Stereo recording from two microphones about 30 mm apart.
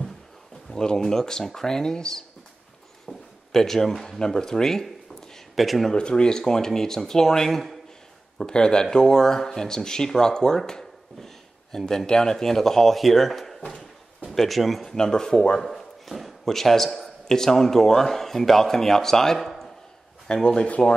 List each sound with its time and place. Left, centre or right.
0.7 s a man's voice: centre
3.1 s a sound: centre
4.3 s a man's voice: centre
4.6 s a sound: centre
5.6 s speech: centre
5.9 s a man's voice: left; by 7.7 s centre
8.4 s speech: left
10.7 s a sound: centre
12.1 s a man's voice: centre
15.0 s speech: left
15.6 s a sound: centre
16.4 s a man's voice: centre
20.2 s speech: left